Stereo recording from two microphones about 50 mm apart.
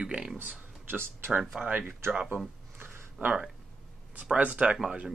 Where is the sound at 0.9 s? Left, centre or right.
Right.